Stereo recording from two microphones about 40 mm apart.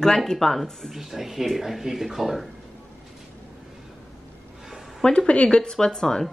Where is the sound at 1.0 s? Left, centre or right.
Centre.